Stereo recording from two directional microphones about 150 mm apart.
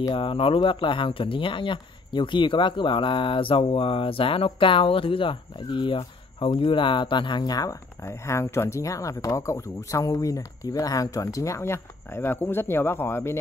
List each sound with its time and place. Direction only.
0.1 s speech: 35° left (ahead or behind); by 13.4 s 15° left (ahead or behind)